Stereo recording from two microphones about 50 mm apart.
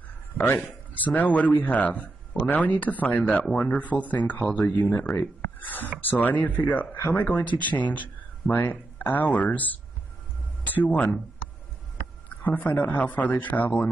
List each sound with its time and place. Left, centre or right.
0.9 s speech: left
5.4 s a sound: left
5.9 s speech: left
10.8 s speech: left
12.3 s speech: left